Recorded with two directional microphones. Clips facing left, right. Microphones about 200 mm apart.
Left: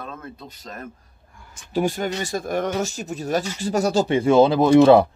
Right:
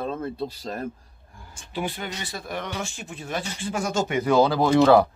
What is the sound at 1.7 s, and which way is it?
Speech, 40° left (ahead or behind).